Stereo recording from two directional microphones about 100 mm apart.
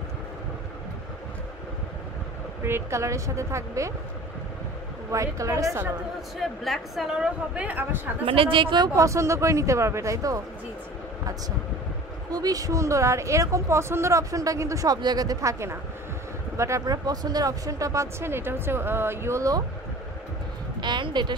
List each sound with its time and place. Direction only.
2.6 s a woman's voice: 25° right (ahead or behind)
5.1 s speech: 30° right (ahead or behind)
6.4 s a woman's voice: centre (ahead or behind); by 8.1 s 20° right (ahead or behind)
8.3 s speech: 60° right (ahead or behind)
8.9 s speech: 30° right (ahead or behind)
12.3 s speech: 40° right (ahead or behind)
16.5 s speech: 30° right (ahead or behind)
20.8 s speech: 50° right (ahead or behind)